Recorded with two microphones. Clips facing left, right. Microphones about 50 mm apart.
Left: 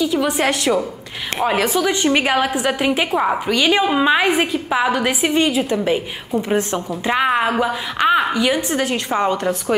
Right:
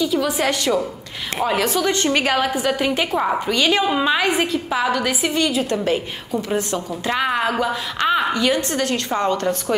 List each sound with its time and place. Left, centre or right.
0.0 s a woman's voice: centre
7.1 s a woman's voice: centre